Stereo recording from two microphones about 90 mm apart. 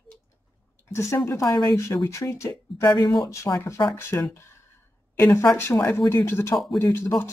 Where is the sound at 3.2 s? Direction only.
35° left (ahead or behind).